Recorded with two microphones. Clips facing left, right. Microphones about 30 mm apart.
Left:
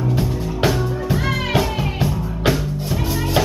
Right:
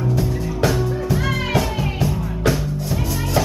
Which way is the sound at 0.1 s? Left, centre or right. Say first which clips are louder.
Even; left.